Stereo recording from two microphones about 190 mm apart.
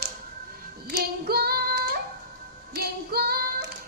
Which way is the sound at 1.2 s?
55° right (ahead or behind).